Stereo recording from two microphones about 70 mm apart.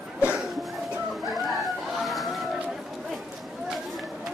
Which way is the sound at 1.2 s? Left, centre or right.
Centre.